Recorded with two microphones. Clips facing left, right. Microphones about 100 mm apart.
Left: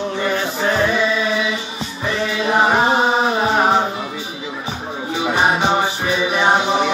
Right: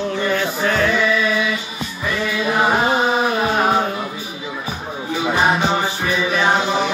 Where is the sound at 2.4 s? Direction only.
25° left (ahead or behind).